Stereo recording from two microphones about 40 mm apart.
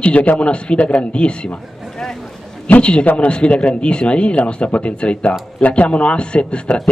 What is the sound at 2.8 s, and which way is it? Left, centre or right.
A man's voice, left.